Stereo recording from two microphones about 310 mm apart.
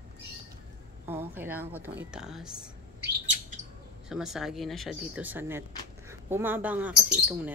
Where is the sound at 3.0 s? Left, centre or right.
Right.